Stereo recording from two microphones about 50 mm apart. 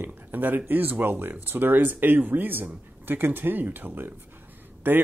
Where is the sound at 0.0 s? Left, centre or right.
Right.